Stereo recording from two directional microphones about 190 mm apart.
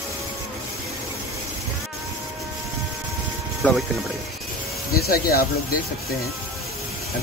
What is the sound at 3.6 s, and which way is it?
Speech, 10° left (ahead or behind).